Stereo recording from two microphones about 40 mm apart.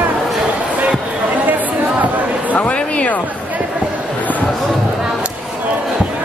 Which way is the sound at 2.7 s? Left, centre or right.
Left.